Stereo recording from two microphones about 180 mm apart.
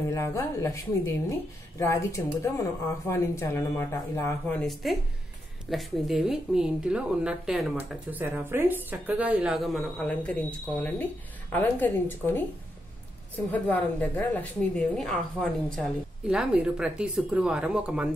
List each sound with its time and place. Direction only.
0.1 s speech: 15° left (ahead or behind)
11.5 s speech: 10° left (ahead or behind)
13.5 s speech: 10° left (ahead or behind)